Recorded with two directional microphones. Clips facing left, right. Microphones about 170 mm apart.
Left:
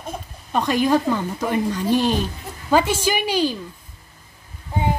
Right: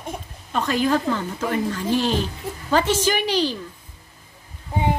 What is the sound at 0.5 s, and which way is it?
A woman's voice, 15° left (ahead or behind).